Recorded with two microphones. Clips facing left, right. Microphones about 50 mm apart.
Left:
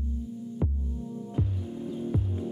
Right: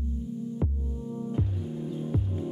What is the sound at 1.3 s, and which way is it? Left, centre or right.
Music, centre.